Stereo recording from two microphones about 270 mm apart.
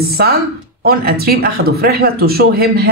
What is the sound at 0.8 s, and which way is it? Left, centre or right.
A man's voice, right.